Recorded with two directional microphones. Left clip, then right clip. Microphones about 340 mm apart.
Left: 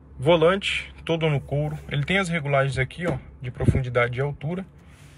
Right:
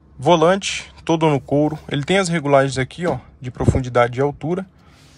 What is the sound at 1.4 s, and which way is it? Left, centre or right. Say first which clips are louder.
Speech: right 10 dB; right.